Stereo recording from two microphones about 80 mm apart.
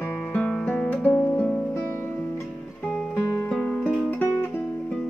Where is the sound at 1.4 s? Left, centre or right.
Centre.